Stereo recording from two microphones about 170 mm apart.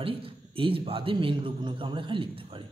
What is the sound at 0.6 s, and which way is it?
Speech, 30° right (ahead or behind).